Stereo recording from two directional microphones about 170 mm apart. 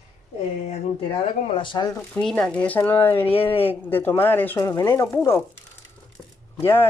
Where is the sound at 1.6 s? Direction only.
25° left (ahead or behind).